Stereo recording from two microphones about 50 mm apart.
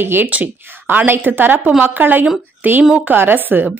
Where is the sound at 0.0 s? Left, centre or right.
Right.